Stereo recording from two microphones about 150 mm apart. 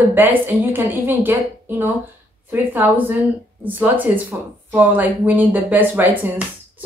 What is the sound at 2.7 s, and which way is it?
Speech, 15° right (ahead or behind).